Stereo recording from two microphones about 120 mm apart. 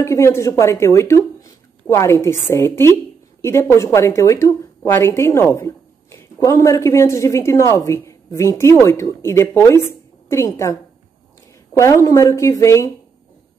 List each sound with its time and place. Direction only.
0.0 s speech: 25° left (ahead or behind)